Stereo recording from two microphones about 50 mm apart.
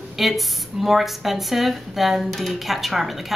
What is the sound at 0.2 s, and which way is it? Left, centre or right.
A woman's voice, centre.